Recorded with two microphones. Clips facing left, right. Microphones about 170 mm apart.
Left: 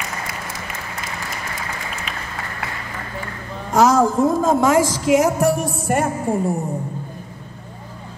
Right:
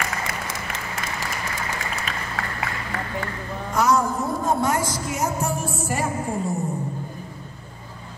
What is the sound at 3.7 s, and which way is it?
A woman's voice, 90° left.